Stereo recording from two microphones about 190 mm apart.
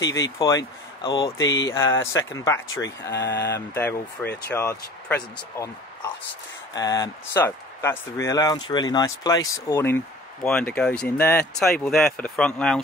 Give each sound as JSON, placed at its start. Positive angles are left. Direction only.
{"t": 0.1, "sound": "speech", "side_deg": 15}
{"t": 1.7, "sound": "speech", "side_deg": 15}
{"t": 3.1, "sound": "speech", "side_deg": 65}
{"t": 3.5, "sound": "speech", "side_deg": 10}
{"t": 6.7, "sound": "speech", "side_deg": 20}